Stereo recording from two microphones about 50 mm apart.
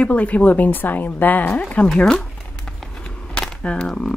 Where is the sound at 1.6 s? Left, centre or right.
Left.